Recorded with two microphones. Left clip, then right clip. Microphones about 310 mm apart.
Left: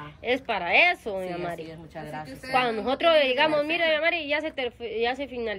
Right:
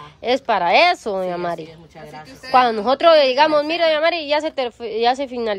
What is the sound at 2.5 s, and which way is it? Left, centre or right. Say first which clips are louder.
A woman's voice: right 10 dB; centre.